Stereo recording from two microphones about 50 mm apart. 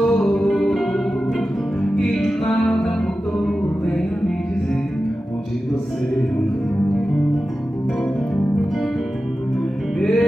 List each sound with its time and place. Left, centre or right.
0.0 s music: centre
9.9 s music: centre